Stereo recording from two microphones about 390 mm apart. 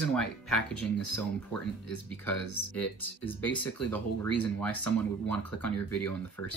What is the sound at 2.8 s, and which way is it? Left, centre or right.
Speech, centre.